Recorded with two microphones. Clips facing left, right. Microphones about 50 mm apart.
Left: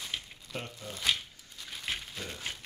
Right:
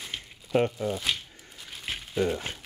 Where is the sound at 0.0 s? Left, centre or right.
Centre.